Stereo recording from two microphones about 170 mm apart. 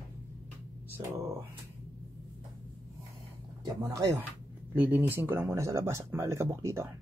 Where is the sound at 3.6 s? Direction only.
20° right (ahead or behind).